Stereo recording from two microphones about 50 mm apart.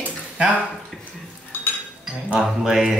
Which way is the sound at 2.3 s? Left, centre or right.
Centre.